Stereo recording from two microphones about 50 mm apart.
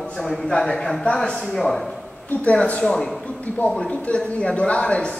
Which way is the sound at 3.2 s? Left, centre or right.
Left.